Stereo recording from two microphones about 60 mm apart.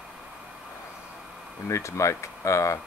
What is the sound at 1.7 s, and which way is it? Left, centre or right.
Speech, left.